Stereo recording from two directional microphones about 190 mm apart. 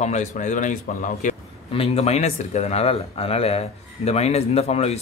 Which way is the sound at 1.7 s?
30° left (ahead or behind).